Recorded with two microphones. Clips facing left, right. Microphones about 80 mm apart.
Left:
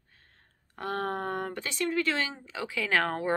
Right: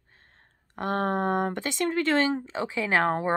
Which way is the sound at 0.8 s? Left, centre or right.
Right.